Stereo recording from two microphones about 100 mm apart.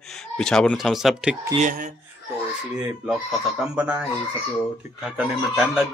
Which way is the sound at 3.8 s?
15° right (ahead or behind).